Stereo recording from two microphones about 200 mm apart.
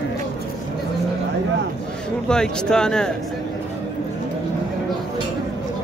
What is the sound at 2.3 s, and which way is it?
Speech, 5° left (ahead or behind).